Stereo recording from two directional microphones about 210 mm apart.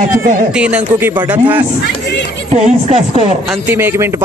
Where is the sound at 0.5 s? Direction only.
5° right (ahead or behind).